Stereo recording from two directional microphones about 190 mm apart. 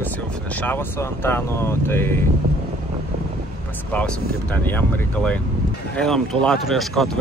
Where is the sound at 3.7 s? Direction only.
10° left (ahead or behind).